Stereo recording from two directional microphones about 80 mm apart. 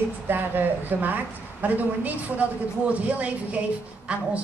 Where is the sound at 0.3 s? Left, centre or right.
Right.